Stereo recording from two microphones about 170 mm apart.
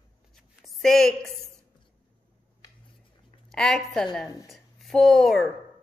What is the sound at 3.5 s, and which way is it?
A woman's voice, 5° left (ahead or behind).